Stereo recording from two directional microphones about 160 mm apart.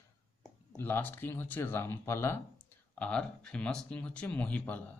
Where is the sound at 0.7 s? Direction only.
10° left (ahead or behind).